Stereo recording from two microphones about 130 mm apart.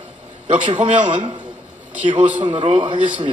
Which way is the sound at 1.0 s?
40° right (ahead or behind).